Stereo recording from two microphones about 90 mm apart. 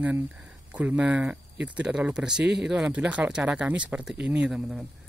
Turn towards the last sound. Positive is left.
turn(degrees=-5)  # may be behind; listen again after turning